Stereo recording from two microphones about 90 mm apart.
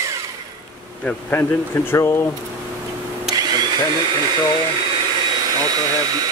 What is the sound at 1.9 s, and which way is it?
Speech, 30° left (ahead or behind).